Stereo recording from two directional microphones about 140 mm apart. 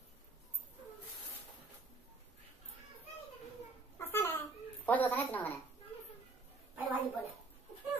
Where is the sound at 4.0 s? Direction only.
15° left (ahead or behind).